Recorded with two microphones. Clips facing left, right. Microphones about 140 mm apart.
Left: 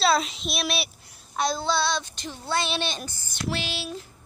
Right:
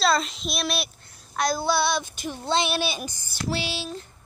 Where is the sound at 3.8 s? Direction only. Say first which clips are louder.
Even; 5° left (ahead or behind).